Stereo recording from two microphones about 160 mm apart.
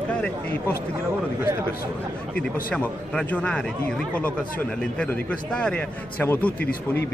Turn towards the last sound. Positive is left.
turn(degrees=10)  # may be behind; listen again after turning